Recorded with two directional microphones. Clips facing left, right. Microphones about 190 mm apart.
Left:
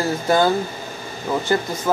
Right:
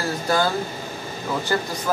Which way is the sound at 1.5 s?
20° left (ahead or behind).